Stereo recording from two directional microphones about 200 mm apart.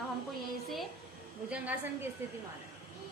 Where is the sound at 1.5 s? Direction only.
10° right (ahead or behind).